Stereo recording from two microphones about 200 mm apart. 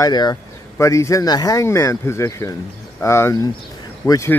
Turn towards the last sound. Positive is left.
turn(degrees=15)  # may be behind; listen again after turning